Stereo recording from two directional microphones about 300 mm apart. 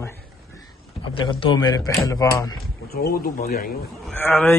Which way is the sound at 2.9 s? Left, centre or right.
Left.